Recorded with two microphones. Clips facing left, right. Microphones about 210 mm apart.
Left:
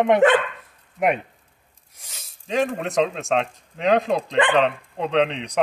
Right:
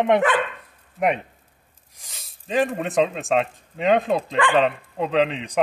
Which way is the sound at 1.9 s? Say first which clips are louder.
Left 1 dB; centre (ahead or behind).